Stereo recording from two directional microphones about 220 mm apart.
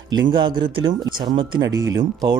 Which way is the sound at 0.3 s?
20° right (ahead or behind).